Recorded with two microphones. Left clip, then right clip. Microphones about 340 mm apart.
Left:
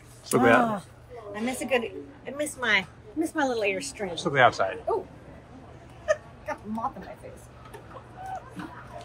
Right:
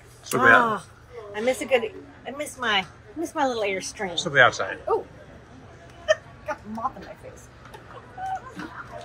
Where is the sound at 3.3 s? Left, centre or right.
Centre.